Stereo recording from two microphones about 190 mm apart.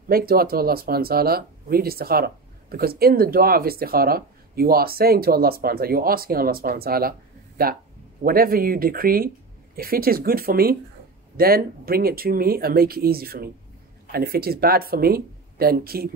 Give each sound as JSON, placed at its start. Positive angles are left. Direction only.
{"t": 0.1, "sound": "speech", "side_deg": -50}